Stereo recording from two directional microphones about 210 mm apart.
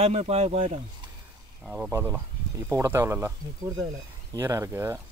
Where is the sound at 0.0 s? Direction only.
30° right (ahead or behind).